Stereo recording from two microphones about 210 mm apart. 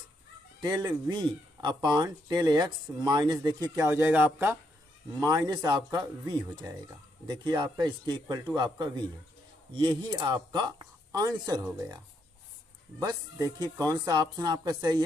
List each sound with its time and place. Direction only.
0.6 s speech: 20° right (ahead or behind)
13.0 s speech: 15° right (ahead or behind)